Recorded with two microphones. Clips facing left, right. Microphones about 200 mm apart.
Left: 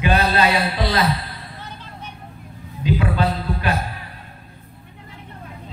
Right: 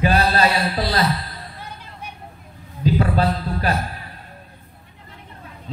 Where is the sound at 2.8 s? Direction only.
40° right (ahead or behind).